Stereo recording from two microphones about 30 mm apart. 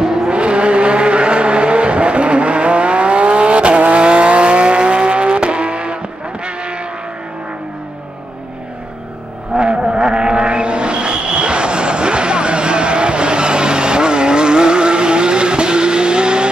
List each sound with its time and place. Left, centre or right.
0.0 s vehicle: centre
0.3 s vehicle: right
9.5 s vehicle: right